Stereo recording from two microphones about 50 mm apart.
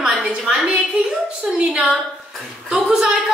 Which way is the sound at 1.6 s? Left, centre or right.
Centre.